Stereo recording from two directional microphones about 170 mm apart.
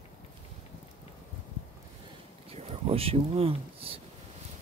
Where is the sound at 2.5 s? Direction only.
35° right (ahead or behind).